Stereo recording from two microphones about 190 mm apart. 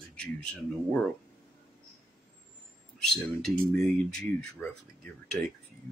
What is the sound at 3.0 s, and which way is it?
Speech, 5° left (ahead or behind).